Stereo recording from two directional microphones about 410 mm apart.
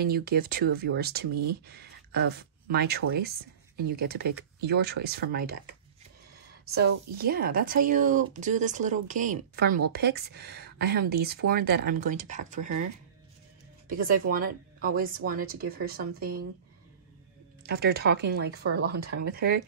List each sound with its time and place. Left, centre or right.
0.0 s speech: right
6.7 s speech: right
13.8 s speech: centre
17.6 s speech: right